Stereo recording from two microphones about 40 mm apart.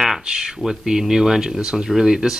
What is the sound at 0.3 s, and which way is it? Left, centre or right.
Speech, centre.